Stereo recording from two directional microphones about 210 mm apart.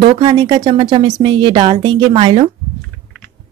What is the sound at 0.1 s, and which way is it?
Speech, 25° right (ahead or behind).